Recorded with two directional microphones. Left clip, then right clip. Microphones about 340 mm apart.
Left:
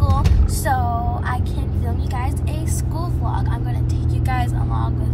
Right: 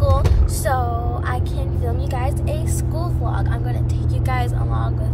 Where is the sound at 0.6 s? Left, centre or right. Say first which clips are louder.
Left 1 dB; centre.